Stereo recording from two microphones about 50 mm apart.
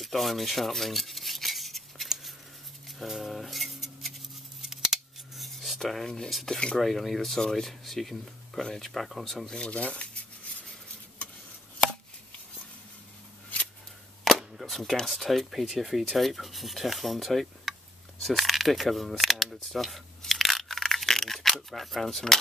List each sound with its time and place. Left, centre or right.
0.0 s rub: centre
3.0 s a sound: centre
4.6 s scissors: centre
6.8 s speech: centre
9.6 s speech: left
14.3 s cap gun: centre
14.6 s speech: centre
18.2 s camera: centre